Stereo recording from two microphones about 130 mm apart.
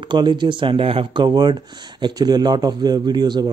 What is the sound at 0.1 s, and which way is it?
Speech, 35° right (ahead or behind).